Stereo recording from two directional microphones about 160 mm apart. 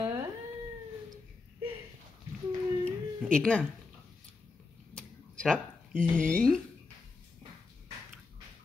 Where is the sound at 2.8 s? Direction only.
5° left (ahead or behind).